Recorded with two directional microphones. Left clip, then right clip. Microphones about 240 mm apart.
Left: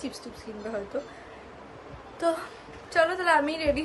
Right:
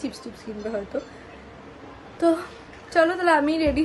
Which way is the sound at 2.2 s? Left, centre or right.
Centre.